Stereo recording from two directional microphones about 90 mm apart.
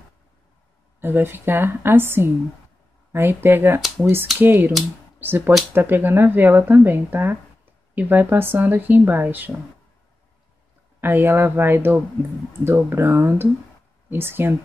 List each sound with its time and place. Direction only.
1.0 s speech: 25° right (ahead or behind)
11.0 s speech: 25° right (ahead or behind)